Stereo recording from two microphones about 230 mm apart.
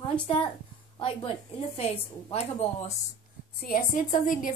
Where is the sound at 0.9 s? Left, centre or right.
Left.